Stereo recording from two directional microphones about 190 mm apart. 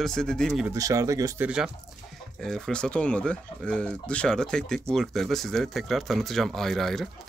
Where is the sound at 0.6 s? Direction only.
15° right (ahead or behind).